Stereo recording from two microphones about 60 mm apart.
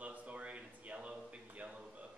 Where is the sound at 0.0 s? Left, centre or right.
Right.